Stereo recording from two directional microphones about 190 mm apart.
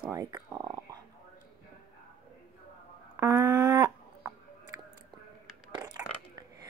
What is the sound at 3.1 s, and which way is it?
Livestock, 15° right (ahead or behind).